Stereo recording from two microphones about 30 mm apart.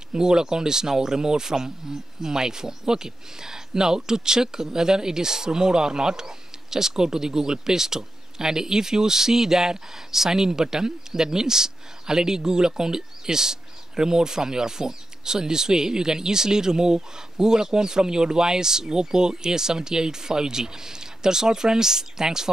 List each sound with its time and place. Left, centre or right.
0.1 s speech: right